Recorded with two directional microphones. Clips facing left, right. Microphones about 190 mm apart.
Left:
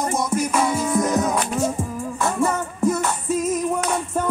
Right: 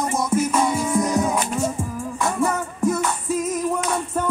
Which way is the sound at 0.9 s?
10° right (ahead or behind).